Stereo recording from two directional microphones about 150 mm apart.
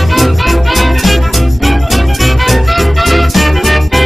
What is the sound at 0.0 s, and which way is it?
Music, centre (ahead or behind).